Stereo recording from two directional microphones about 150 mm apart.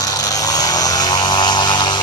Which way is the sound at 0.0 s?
25° left (ahead or behind).